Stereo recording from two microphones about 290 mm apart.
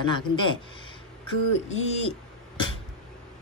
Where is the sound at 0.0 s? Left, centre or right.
Centre.